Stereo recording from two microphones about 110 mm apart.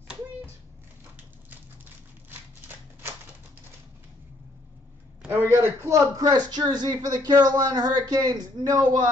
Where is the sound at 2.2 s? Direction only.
20° right (ahead or behind).